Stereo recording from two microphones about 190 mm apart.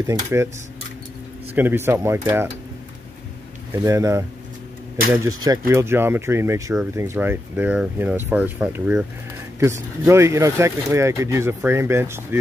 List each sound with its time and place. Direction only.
0.0 s speech: 15° right (ahead or behind)
1.5 s speech: 10° right (ahead or behind)
3.8 s speech: 15° right (ahead or behind)
10.0 s speech: 15° right (ahead or behind)